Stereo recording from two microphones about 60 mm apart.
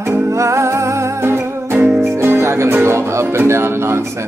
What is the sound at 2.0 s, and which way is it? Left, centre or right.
Music, right.